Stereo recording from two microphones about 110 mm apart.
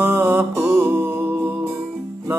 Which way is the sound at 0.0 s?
20° right (ahead or behind).